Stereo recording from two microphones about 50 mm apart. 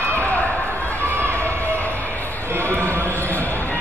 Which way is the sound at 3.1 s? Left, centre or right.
Left.